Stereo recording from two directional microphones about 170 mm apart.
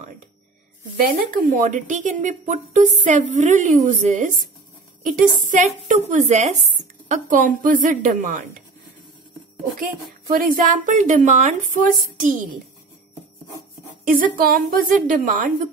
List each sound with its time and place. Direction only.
0.9 s speech: 55° right (ahead or behind)
5.4 s speech: 50° right (ahead or behind)
10.3 s speech: 55° right (ahead or behind)
14.0 s speech: 50° right (ahead or behind)